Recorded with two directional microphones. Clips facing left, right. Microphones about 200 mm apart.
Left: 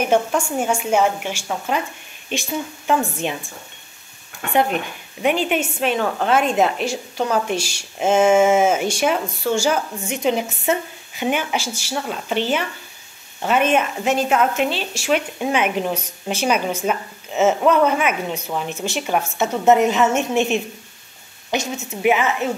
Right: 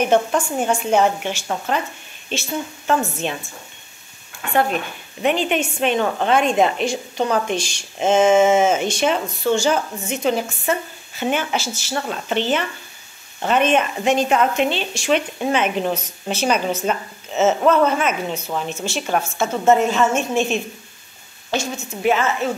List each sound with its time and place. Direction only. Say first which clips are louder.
0.0 s a woman's voice: right 1 dB; 10° left (ahead or behind)
5.2 s a woman's voice: even; 10° left (ahead or behind)